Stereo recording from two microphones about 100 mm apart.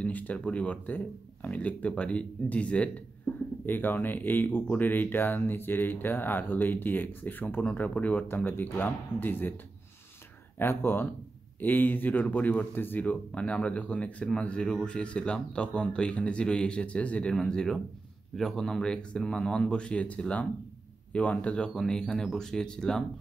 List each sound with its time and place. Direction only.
0.0 s speech: 15° left (ahead or behind)
10.6 s speech: 25° left (ahead or behind); by 23.0 s 5° left (ahead or behind)